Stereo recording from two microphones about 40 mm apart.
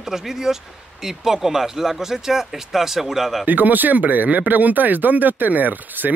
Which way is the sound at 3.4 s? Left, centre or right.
Right.